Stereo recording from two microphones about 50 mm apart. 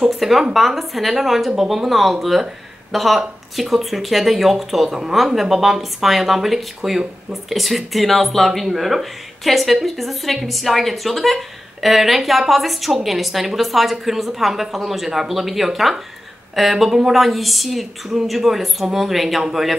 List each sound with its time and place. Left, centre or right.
0.1 s speech: centre